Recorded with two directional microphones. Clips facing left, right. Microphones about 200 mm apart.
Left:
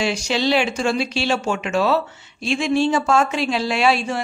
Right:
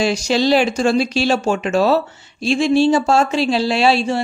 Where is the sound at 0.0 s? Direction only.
40° right (ahead or behind).